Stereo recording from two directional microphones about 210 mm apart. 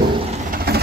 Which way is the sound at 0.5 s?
50° right (ahead or behind).